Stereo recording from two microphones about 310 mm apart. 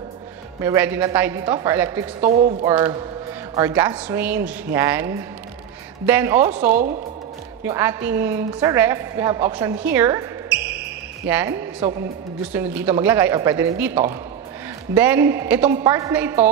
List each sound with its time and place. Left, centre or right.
0.7 s a woman's voice: centre
2.2 s speech: right
2.7 s a woman's voice: centre
6.7 s speech: right
7.6 s a woman's voice: centre
9.9 s a sound: centre
11.2 s a woman's voice: centre